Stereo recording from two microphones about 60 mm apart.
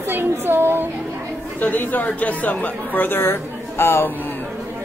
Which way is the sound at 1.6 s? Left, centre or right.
Left.